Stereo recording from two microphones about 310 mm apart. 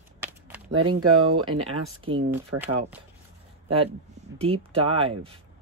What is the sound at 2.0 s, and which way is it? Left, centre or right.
Speech, centre.